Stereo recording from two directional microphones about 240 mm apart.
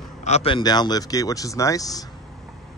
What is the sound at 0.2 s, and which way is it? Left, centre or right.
Speech, left.